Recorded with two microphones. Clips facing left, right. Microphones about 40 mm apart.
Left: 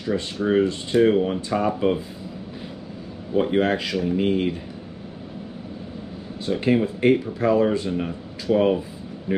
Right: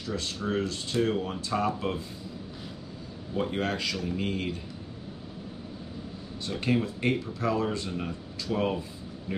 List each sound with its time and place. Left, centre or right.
0.0 s speech: left
3.3 s speech: left
6.4 s speech: centre